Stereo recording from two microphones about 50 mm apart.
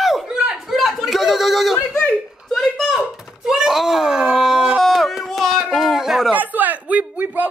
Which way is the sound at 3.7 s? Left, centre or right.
Centre.